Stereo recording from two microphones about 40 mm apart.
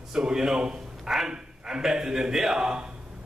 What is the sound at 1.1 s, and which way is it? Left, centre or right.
Bow-wow, centre.